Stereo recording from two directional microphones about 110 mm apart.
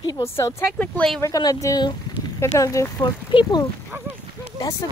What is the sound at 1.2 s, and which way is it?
A woman's voice, 35° left (ahead or behind).